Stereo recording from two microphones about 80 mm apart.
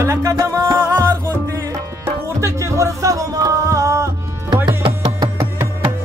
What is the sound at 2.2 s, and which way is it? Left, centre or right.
Music, right.